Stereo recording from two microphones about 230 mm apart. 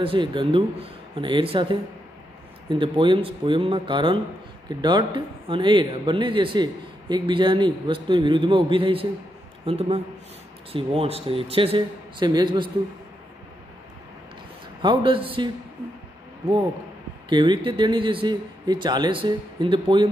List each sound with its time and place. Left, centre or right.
0.0 s a man's voice: right
14.8 s a man's voice: right
17.3 s a man's voice: centre